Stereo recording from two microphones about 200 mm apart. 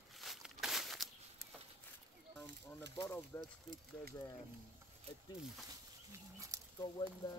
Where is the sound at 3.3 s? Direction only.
15° left (ahead or behind).